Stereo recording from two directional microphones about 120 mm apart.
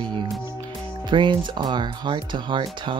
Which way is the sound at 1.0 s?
40° right (ahead or behind).